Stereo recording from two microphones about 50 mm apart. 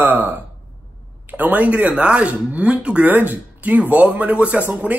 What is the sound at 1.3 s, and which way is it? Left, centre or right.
Speech, right.